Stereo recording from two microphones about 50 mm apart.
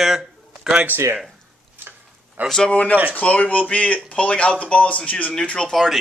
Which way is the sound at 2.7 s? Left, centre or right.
Left.